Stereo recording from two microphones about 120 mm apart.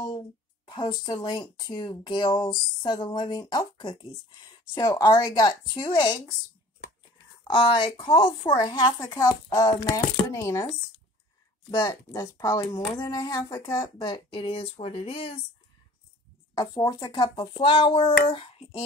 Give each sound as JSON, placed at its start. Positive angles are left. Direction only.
{"t": 0.7, "sound": "speech", "side_deg": 35}
{"t": 7.5, "sound": "speech", "side_deg": 45}
{"t": 11.8, "sound": "speech", "side_deg": 25}
{"t": 14.0, "sound": "a child's voice", "side_deg": 45}
{"t": 16.5, "sound": "a child's voice", "side_deg": 35}